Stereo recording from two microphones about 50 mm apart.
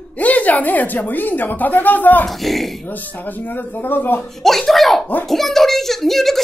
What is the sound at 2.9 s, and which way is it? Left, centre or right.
Speech, left.